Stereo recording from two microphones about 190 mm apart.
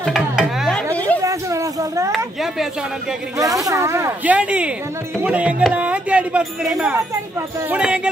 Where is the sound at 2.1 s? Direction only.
Centre (ahead or behind).